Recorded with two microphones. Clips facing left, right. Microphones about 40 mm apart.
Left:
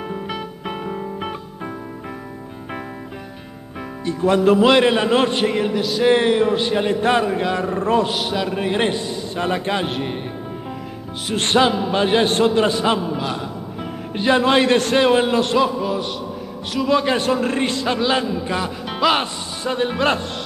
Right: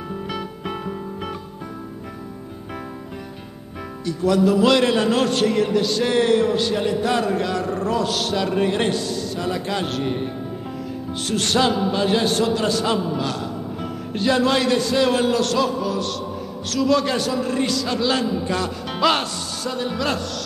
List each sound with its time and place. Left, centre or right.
0.3 s music: centre
4.0 s a man's voice: left
5.8 s a man's voice: centre
6.0 s a man's voice: left
8.3 s a man's voice: centre
9.4 s a man's voice: left
9.8 s a man's voice: left
11.3 s a man's voice: left
13.2 s music: centre
15.0 s a man's voice: left
17.2 s a man's voice: left; by 19.2 s centre
19.6 s a man's voice: left